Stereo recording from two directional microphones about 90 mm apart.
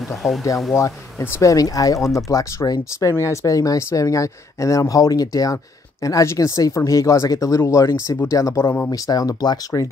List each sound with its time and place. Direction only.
0.2 s speech: centre (ahead or behind)
0.7 s speech: 30° left (ahead or behind)
8.9 s speech: 45° left (ahead or behind)